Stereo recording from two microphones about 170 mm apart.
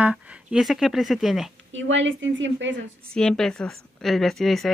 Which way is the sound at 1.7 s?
90° right.